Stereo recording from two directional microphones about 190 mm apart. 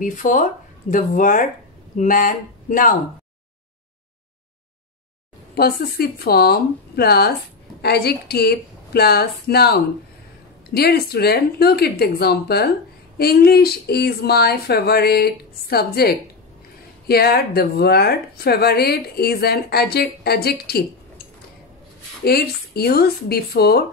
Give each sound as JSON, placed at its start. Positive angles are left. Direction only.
{"t": 0.0, "sound": "speech", "side_deg": 45}
{"t": 5.5, "sound": "speech", "side_deg": 55}
{"t": 22.2, "sound": "speech", "side_deg": 55}